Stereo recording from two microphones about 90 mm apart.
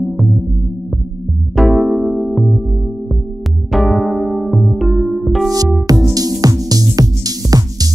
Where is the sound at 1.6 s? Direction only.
Centre (ahead or behind).